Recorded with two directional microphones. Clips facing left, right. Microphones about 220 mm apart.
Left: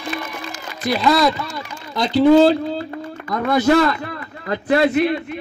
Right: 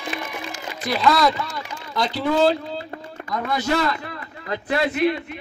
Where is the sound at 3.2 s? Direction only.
50° left (ahead or behind).